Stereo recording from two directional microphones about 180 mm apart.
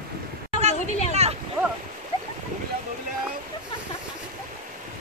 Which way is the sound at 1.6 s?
10° right (ahead or behind).